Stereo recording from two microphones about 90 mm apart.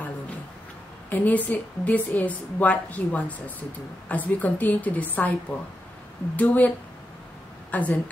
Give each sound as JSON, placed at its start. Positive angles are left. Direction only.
{"t": 1.1, "sound": "a woman's voice", "side_deg": 20}
{"t": 6.3, "sound": "a woman's voice", "side_deg": 20}
{"t": 7.7, "sound": "a woman's voice", "side_deg": 15}